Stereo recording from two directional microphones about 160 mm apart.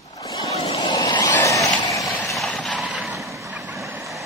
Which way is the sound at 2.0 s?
Centre (ahead or behind).